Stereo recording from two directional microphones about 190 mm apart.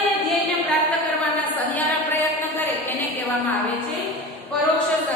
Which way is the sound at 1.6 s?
10° left (ahead or behind).